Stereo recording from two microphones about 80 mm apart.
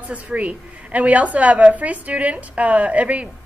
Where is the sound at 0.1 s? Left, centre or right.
Centre.